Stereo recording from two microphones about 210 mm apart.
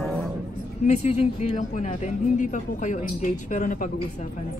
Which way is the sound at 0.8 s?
30° left (ahead or behind).